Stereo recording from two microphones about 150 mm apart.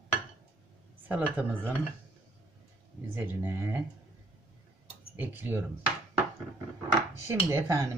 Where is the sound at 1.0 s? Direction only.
10° right (ahead or behind).